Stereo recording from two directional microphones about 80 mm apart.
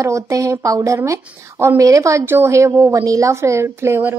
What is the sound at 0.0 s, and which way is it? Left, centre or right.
A woman's voice, right.